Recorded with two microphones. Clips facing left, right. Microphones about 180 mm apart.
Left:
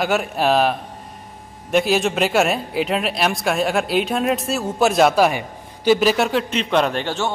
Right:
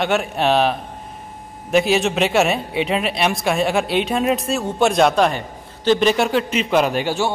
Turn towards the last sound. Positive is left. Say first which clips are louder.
# right 2 dB
turn(degrees=-10)  # may be behind; listen again after turning